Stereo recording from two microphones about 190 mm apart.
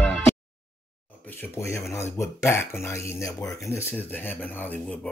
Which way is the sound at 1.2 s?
10° left (ahead or behind).